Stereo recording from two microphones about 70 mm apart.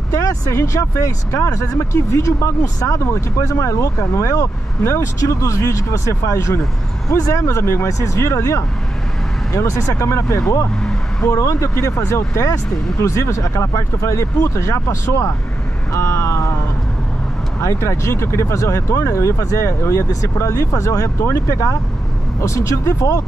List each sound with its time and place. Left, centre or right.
0.1 s speech: left
7.1 s speech: left
10.8 s vehicle: centre
11.2 s speech: left
15.9 s vehicle: left
17.6 s speech: left